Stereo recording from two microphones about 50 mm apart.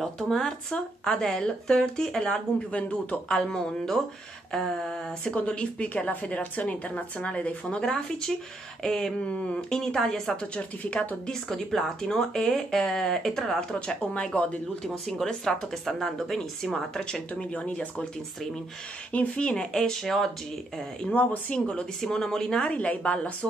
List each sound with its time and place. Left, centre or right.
0.0 s speech: centre
2.7 s a woman's voice: left
3.3 s speech: centre
5.3 s a woman's voice: left
7.8 s speech: centre
9.2 s a woman's voice: left
15.1 s speech: centre
16.7 s a woman's voice: centre
19.1 s a woman's voice: left; by 20.2 s centre
21.0 s a woman's voice: left
23.4 s speech: centre